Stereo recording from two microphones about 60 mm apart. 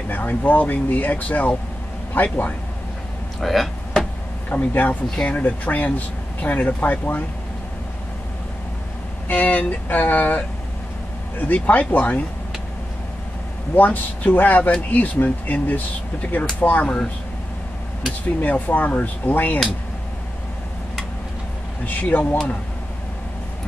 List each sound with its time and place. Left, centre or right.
0.1 s speech: left
3.3 s a sound: centre
4.5 s speech: left
9.3 s speech: left
13.7 s speech: left
18.4 s speech: left
21.8 s speech: left